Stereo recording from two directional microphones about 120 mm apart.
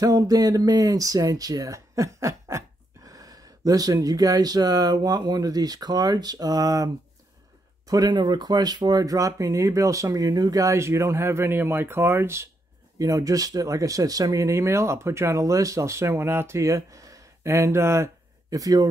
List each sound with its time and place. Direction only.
0.0 s speech: 30° right (ahead or behind)
7.9 s speech: 35° right (ahead or behind)